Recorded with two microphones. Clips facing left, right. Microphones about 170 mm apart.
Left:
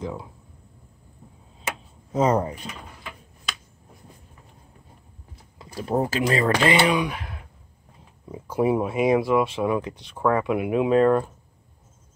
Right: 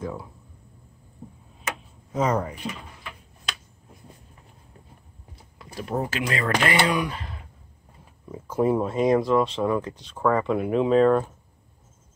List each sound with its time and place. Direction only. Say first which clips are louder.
0.0 s speech: left 1 dB; 15° left (ahead or behind)
2.1 s speech: left 3 dB; 30° left (ahead or behind)
5.6 s speech: left 4 dB; 30° left (ahead or behind)
6.6 s speech: left 3 dB; 20° left (ahead or behind); by 11.3 s 5° left (ahead or behind)